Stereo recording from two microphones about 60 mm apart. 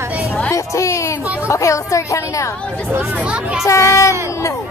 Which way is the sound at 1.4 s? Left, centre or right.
Left.